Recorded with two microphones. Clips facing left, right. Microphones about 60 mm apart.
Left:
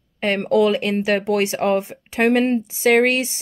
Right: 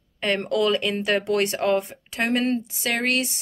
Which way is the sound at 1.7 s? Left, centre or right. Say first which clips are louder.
Left 5 dB; left.